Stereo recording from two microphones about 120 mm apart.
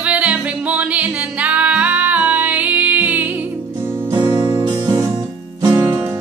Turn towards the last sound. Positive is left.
turn(degrees=-30)  # may be behind; listen again after turning